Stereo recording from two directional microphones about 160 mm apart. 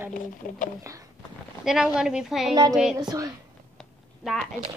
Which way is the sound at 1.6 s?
5° right (ahead or behind).